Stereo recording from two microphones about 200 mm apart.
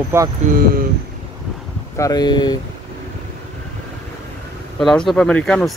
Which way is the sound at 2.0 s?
20° left (ahead or behind).